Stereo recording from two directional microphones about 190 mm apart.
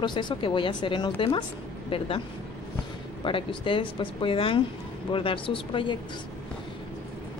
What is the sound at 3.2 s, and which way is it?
A woman's voice, 25° left (ahead or behind).